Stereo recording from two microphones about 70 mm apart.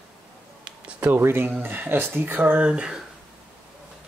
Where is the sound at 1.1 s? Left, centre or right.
Right; by 3.0 s centre.